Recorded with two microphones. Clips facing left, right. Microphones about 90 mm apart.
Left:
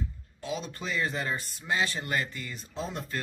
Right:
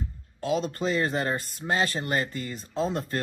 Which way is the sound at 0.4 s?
45° right (ahead or behind).